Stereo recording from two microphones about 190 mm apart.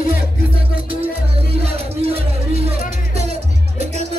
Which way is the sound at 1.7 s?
30° right (ahead or behind).